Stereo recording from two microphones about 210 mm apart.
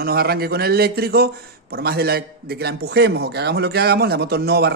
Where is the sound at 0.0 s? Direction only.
45° right (ahead or behind).